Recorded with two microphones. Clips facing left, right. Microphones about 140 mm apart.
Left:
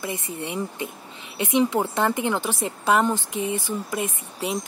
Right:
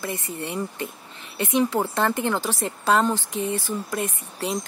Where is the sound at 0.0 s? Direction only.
15° left (ahead or behind).